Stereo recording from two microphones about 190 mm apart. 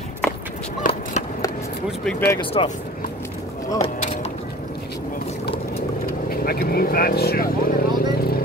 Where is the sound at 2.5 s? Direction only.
25° left (ahead or behind).